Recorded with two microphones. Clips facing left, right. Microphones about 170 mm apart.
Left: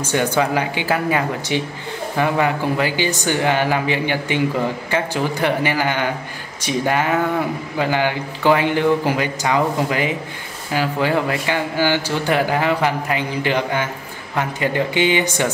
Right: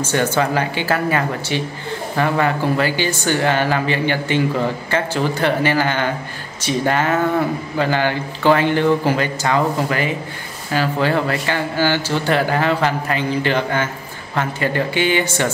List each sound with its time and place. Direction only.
0.0 s speech: 15° left (ahead or behind)